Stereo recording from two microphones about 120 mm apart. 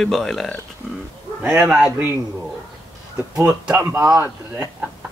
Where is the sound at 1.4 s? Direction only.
10° right (ahead or behind).